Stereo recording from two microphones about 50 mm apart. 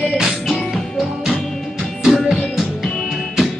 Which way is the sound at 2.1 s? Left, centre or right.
Centre.